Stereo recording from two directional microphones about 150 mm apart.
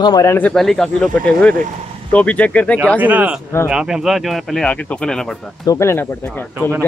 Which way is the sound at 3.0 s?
10° right (ahead or behind).